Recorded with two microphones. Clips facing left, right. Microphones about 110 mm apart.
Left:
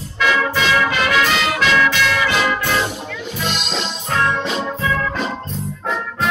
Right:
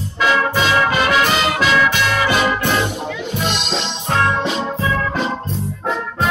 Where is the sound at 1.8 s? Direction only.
50° right (ahead or behind).